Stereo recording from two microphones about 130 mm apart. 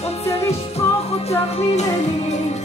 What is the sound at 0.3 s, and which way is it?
Music, 50° left (ahead or behind).